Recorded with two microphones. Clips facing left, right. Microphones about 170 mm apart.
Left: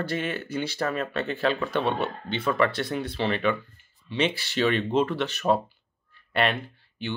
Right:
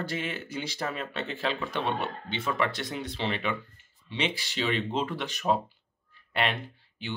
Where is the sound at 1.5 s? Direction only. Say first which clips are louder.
Left 5 dB; 55° left (ahead or behind).